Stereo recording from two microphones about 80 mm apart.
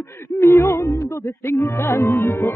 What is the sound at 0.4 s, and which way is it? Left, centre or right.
Music, left.